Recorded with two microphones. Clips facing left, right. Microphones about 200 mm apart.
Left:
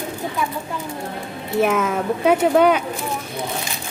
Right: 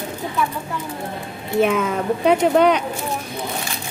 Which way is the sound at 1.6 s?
5° left (ahead or behind).